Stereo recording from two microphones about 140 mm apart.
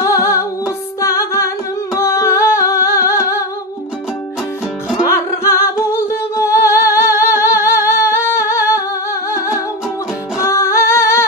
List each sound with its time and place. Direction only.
0.0 s music: 20° left (ahead or behind)
4.9 s music: 20° left (ahead or behind)
10.4 s singing: 20° left (ahead or behind)